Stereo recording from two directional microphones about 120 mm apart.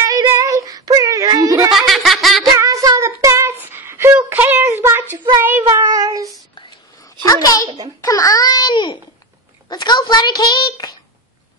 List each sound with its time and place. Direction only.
0.0 s child singing: 30° right (ahead or behind)
1.8 s giggle: centre (ahead or behind)
2.5 s child singing: 30° right (ahead or behind)
3.7 s a sound: 20° right (ahead or behind)
5.4 s child singing: 20° right (ahead or behind)
5.8 s child singing: 30° right (ahead or behind)
7.2 s a sound: 30° left (ahead or behind)